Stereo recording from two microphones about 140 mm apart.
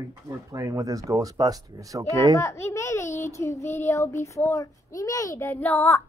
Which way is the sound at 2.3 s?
20° left (ahead or behind).